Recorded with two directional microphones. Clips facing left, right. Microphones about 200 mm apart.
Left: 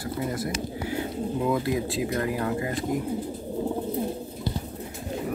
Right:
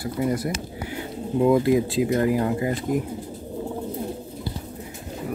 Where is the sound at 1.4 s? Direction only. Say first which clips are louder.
Right 9 dB; 25° right (ahead or behind).